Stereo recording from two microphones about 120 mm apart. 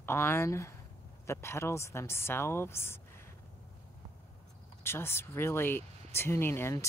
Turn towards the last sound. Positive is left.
turn(degrees=20)  # may be behind; listen again after turning